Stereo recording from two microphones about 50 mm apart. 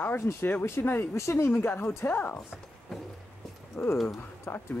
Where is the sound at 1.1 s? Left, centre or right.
Left.